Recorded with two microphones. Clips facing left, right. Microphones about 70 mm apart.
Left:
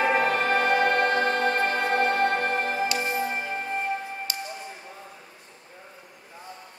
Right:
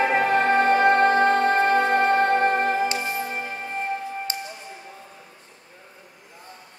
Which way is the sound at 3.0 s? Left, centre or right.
Centre.